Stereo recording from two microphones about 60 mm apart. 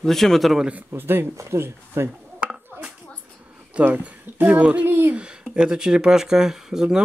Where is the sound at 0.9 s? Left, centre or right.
Right.